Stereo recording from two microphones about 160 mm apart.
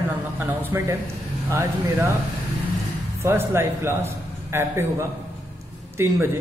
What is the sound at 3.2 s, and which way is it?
A man's voice, 15° right (ahead or behind).